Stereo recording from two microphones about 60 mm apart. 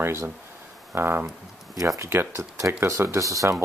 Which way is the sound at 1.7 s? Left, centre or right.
Right.